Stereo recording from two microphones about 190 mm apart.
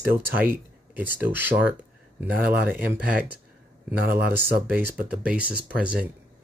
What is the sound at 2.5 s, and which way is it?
Speech, 50° right (ahead or behind).